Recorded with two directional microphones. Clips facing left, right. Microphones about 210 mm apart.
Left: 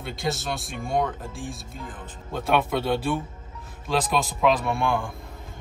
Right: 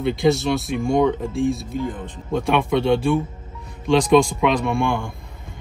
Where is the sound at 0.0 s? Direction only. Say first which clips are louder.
Right 11 dB; centre (ahead or behind).